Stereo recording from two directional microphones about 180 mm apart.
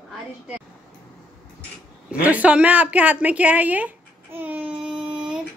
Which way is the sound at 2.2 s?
10° right (ahead or behind).